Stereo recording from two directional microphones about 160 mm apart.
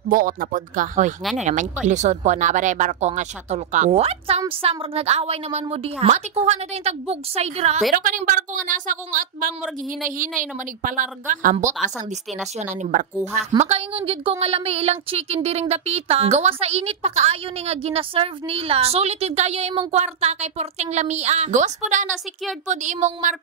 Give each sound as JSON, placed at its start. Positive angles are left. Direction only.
{"t": 0.1, "sound": "a woman's voice", "side_deg": -60}
{"t": 7.9, "sound": "a woman's voice", "side_deg": -55}
{"t": 12.5, "sound": "speech", "side_deg": -50}
{"t": 13.6, "sound": "a woman's voice", "side_deg": -40}